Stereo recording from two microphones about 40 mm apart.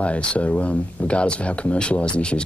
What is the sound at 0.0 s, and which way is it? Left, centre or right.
Speech, left.